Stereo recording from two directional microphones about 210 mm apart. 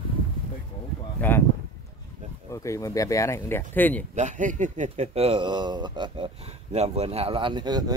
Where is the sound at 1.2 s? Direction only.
10° left (ahead or behind).